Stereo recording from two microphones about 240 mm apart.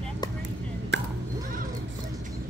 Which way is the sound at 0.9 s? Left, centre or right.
Right.